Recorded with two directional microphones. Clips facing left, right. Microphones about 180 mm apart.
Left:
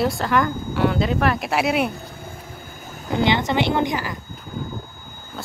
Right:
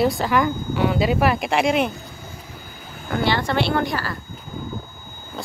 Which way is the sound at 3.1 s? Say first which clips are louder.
Left 1 dB; 20° left (ahead or behind).